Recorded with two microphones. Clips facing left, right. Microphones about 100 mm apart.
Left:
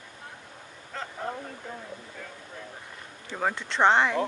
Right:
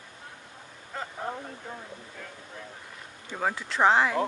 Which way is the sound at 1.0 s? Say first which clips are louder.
Right 1 dB; 10° right (ahead or behind).